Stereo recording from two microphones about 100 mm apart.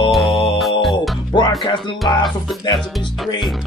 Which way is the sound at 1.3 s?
55° left (ahead or behind).